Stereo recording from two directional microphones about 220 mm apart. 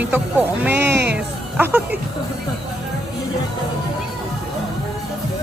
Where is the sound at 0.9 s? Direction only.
50° right (ahead or behind).